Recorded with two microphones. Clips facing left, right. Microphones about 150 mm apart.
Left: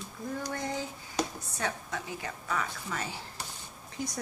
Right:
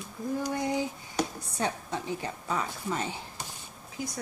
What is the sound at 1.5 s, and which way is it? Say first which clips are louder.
A woman's voice: right 4 dB; 30° right (ahead or behind).